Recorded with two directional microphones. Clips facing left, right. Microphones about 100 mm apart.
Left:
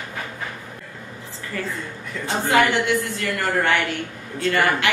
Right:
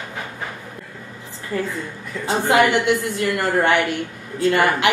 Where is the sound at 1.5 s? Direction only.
30° right (ahead or behind).